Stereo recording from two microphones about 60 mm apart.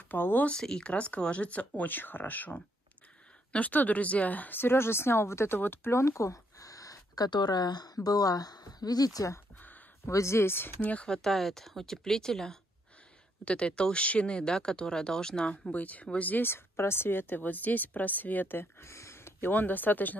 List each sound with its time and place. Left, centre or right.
0.1 s speech: left
0.5 s speech: centre; by 5.6 s left
5.6 s a sound: left
7.8 s speech: left
10.1 s speech: left
11.1 s speech: centre
15.6 s speech: left
16.4 s speech: left
19.5 s speech: left